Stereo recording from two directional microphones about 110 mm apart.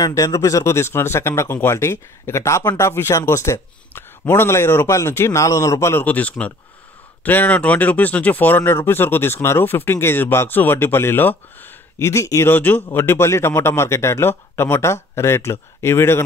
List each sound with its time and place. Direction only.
0.0 s speech: 30° left (ahead or behind)